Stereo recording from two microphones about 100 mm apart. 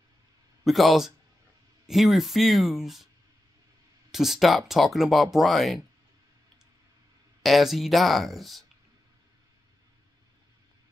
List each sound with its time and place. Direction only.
0.7 s speech: centre (ahead or behind)
4.1 s speech: 5° right (ahead or behind)
7.4 s speech: centre (ahead or behind)